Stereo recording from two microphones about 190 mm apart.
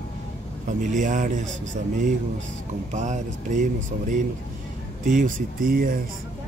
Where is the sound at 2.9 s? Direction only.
40° right (ahead or behind).